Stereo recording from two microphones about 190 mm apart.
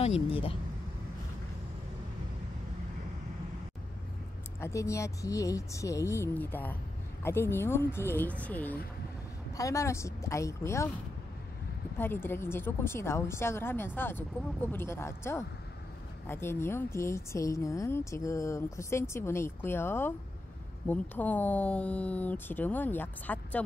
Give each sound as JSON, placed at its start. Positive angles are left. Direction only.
{"t": 0.0, "sound": "speech", "side_deg": 30}
{"t": 4.6, "sound": "speech", "side_deg": 15}
{"t": 12.0, "sound": "speech", "side_deg": 10}